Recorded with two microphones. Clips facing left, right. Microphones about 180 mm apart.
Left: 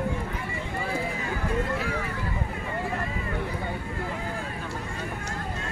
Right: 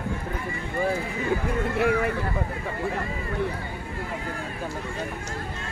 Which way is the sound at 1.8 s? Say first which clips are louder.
Right 8 dB; 60° right (ahead or behind).